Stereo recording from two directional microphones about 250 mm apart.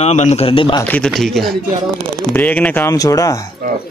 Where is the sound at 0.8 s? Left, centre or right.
Centre.